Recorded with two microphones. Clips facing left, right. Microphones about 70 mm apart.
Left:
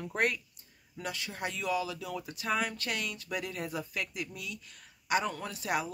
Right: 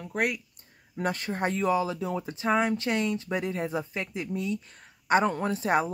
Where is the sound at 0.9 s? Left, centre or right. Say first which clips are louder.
Right 9 dB; right.